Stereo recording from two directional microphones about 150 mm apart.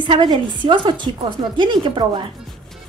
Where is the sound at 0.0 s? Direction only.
30° right (ahead or behind).